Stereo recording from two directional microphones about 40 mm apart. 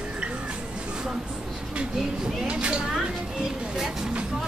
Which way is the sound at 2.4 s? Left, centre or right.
Right.